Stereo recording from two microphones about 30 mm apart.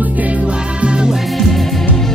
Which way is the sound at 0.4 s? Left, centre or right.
Right.